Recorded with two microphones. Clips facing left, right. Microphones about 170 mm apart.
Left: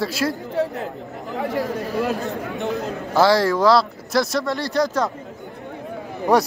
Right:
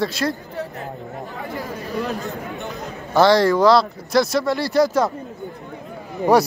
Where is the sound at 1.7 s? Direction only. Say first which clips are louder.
Left 3 dB; centre (ahead or behind).